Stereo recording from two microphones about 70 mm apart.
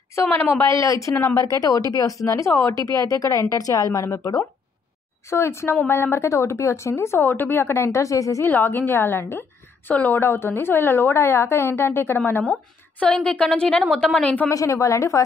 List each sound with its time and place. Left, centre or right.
0.3 s speech: left
5.3 s speech: left
8.5 s a woman's voice: left
10.2 s speech: left
13.0 s a woman's voice: centre
14.5 s speech: left